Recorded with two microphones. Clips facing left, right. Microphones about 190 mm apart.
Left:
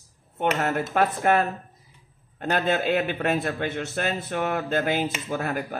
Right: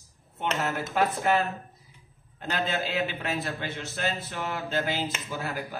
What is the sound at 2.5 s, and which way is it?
A man's voice, 55° left (ahead or behind).